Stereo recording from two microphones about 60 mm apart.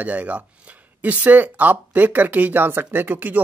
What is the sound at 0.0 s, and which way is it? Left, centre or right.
Speech, right.